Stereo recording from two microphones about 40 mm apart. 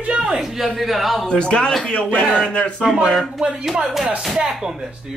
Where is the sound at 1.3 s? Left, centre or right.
Left.